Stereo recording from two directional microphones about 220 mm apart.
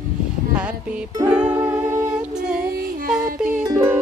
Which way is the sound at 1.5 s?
10° right (ahead or behind).